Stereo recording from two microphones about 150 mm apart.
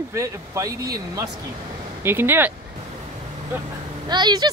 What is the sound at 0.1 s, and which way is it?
Speech, 20° right (ahead or behind).